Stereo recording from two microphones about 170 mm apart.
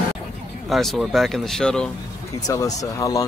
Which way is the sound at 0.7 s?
Centre (ahead or behind).